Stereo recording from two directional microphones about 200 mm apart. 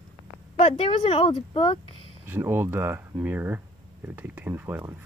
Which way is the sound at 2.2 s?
10° right (ahead or behind).